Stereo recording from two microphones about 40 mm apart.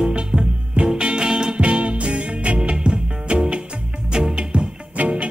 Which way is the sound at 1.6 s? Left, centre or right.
Right.